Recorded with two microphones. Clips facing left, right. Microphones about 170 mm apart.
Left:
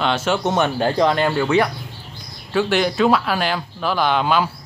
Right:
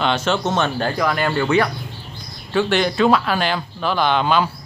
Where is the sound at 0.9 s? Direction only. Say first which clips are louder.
Left 5 dB; 25° left (ahead or behind).